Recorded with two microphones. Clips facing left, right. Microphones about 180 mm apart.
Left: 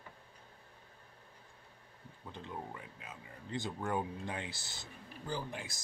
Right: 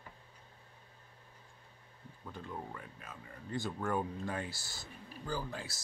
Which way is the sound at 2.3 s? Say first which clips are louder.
Even; 20° left (ahead or behind).